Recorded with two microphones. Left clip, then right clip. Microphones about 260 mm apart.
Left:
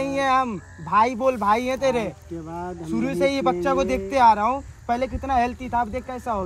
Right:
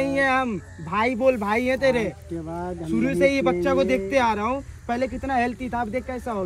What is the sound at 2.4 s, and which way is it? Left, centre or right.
Speech, centre.